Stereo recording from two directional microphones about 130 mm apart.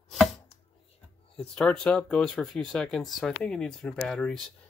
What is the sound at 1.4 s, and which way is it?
Speech, 5° left (ahead or behind).